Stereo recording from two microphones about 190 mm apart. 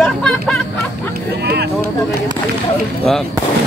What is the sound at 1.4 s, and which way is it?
Speech, 60° right (ahead or behind).